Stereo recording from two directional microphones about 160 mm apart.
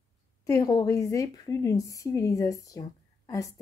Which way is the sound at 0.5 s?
20° left (ahead or behind).